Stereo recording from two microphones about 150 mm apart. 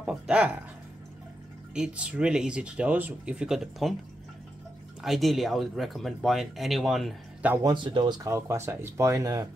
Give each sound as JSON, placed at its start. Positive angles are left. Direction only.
{"t": 0.0, "sound": "speech", "side_deg": -5}
{"t": 1.7, "sound": "speech", "side_deg": -5}
{"t": 5.0, "sound": "speech", "side_deg": 0}
{"t": 7.6, "sound": "speech", "side_deg": -30}